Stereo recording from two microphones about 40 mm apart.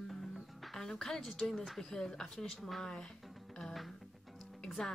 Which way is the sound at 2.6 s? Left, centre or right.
Centre.